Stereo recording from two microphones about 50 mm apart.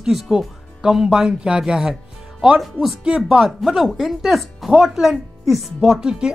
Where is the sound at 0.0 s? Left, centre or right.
Centre.